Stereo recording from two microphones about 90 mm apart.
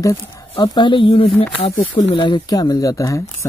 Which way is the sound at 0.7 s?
60° left (ahead or behind).